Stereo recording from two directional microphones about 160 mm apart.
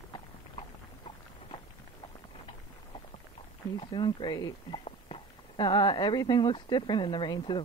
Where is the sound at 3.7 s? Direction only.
30° left (ahead or behind).